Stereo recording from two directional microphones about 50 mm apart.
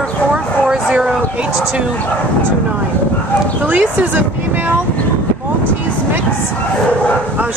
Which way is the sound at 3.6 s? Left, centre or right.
Right.